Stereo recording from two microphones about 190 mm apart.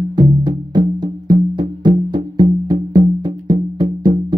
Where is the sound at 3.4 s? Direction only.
25° right (ahead or behind).